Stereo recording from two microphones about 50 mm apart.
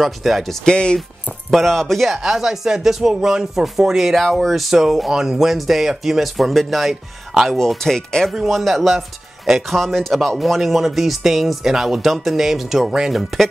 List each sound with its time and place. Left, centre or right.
0.0 s speech: centre
0.7 s speech: centre
1.5 s speech: centre
7.5 s speech: centre